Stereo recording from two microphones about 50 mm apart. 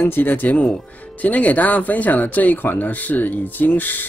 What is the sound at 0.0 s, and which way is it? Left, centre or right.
Speech, left.